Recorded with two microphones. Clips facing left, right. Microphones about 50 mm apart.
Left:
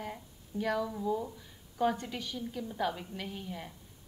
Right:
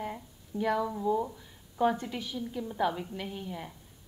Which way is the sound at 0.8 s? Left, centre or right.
Centre.